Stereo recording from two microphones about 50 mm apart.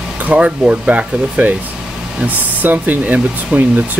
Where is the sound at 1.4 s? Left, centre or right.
Right.